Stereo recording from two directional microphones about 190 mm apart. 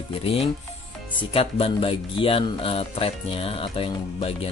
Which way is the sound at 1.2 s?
30° left (ahead or behind).